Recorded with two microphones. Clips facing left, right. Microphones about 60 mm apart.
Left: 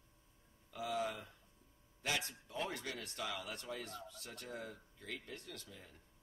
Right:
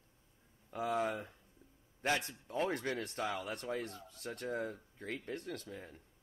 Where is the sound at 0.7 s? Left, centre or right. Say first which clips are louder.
Right 5 dB; right.